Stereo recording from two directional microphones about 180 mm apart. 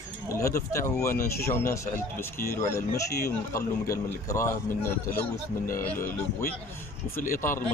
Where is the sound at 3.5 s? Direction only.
15° left (ahead or behind).